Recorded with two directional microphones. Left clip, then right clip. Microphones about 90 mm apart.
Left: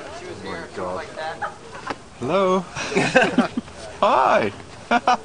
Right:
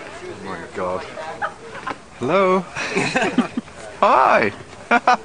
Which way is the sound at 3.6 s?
5° right (ahead or behind).